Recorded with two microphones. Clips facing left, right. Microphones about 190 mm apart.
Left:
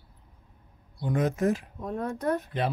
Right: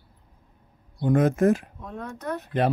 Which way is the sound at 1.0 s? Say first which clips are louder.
Right 6 dB; 50° right (ahead or behind).